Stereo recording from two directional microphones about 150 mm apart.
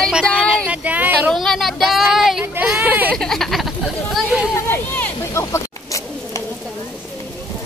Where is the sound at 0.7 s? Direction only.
10° right (ahead or behind).